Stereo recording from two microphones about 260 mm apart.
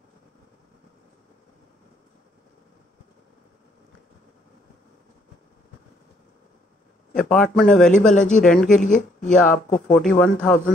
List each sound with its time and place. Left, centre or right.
7.2 s a man's voice: centre
8.6 s speech: left
9.9 s a man's voice: centre